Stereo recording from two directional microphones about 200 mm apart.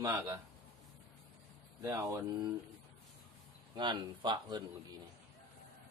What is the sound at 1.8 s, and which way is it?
Speech, 15° right (ahead or behind).